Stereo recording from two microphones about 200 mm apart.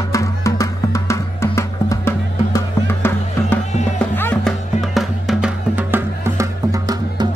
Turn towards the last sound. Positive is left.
turn(degrees=-20)  # may be behind; listen again after turning